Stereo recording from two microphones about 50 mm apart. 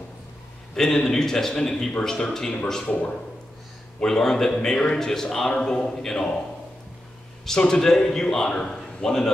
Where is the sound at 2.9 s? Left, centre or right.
Left.